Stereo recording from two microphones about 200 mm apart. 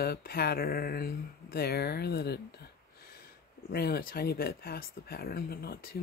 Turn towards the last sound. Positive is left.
turn(degrees=50)  # may be behind; listen again after turning